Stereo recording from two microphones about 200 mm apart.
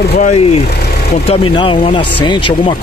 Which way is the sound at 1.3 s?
25° left (ahead or behind).